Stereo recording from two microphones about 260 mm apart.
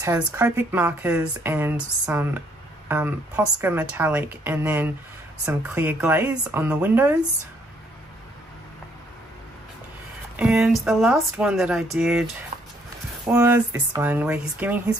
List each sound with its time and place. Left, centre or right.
0.0 s speech: centre
10.3 s speech: centre
12.5 s a sound: right
13.3 s speech: centre